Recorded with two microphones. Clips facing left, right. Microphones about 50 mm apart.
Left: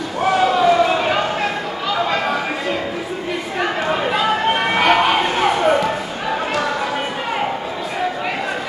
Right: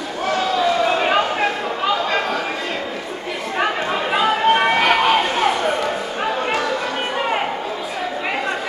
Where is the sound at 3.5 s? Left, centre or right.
Centre.